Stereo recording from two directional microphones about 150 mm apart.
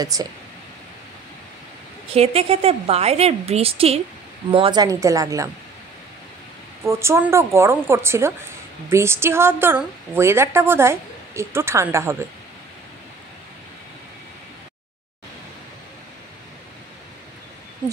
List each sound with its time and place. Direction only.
0.0 s speech: 25° right (ahead or behind)
2.1 s a woman's voice: 40° right (ahead or behind); by 5.5 s 20° right (ahead or behind)
6.8 s a woman's voice: 20° right (ahead or behind)